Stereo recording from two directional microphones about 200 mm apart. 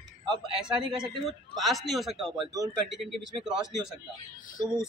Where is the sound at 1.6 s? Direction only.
Centre (ahead or behind).